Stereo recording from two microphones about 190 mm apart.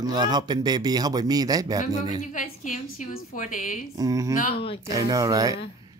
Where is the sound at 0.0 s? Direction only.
20° right (ahead or behind).